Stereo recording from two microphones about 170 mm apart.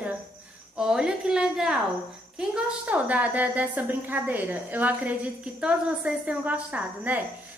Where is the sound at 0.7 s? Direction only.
5° right (ahead or behind).